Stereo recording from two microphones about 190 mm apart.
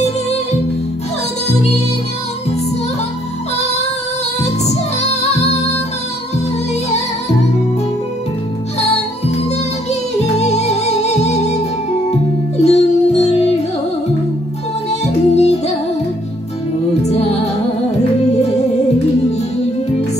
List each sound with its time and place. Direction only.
1.5 s music: 35° left (ahead or behind)
4.4 s music: 35° left (ahead or behind)
6.9 s music: 35° left (ahead or behind)
8.7 s music: 35° left (ahead or behind)
14.9 s music: 35° left (ahead or behind)
17.0 s music: 35° left (ahead or behind)